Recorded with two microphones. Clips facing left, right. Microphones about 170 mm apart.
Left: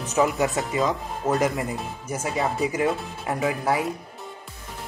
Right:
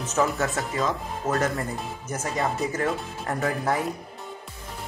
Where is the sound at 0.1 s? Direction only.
15° left (ahead or behind).